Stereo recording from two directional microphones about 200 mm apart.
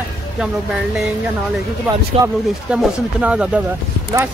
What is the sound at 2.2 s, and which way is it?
Speech, 20° right (ahead or behind).